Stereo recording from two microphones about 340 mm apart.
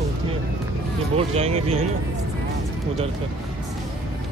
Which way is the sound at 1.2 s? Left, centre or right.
Centre.